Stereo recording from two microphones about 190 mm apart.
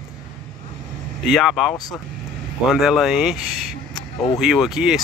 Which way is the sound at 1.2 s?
Centre (ahead or behind).